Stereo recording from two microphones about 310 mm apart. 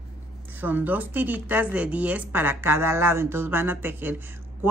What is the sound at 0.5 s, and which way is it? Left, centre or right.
A woman's voice, centre.